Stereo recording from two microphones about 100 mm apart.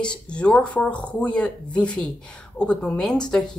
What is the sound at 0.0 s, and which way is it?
Speech, 10° left (ahead or behind).